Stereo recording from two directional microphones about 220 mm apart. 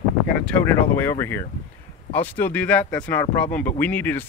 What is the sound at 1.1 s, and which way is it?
Speech, 10° left (ahead or behind).